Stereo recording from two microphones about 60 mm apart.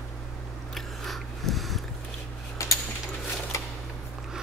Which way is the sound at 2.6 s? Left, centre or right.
Left.